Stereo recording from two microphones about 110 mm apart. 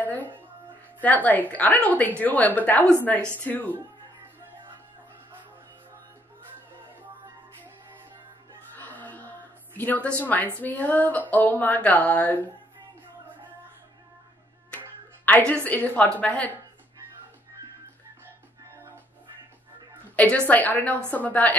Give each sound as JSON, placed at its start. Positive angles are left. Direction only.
{"t": 0.0, "sound": "music", "side_deg": 15}
{"t": 1.0, "sound": "a woman's voice", "side_deg": 15}
{"t": 8.7, "sound": "music", "side_deg": 15}
{"t": 9.8, "sound": "a woman's voice", "side_deg": 15}
{"t": 15.2, "sound": "a woman's voice", "side_deg": 10}
{"t": 20.2, "sound": "a woman's voice", "side_deg": 10}